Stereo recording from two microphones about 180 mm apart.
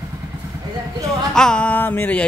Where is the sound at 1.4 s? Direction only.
5° left (ahead or behind).